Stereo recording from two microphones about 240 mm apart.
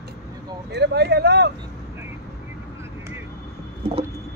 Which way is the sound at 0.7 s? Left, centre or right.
Right.